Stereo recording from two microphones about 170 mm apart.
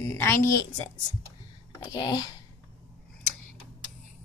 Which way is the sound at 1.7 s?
25° left (ahead or behind).